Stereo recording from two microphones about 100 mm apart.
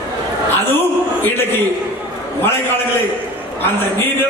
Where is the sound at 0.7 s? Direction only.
20° left (ahead or behind).